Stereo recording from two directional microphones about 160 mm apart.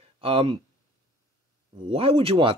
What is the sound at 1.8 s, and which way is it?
Speech, 35° right (ahead or behind).